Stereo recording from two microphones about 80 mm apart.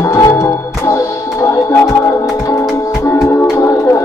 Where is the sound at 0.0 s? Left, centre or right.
Left.